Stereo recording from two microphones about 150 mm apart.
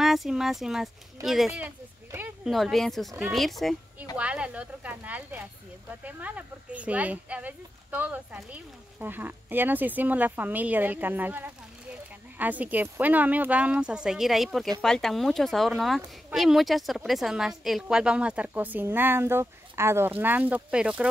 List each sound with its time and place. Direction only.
0.0 s a woman's voice: centre (ahead or behind)